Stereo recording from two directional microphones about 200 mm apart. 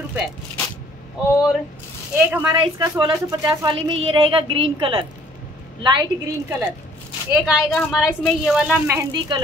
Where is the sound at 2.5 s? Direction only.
20° right (ahead or behind).